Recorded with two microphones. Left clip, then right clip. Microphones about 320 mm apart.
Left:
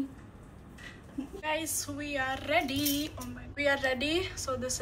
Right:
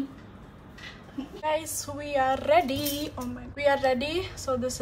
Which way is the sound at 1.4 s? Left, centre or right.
Centre.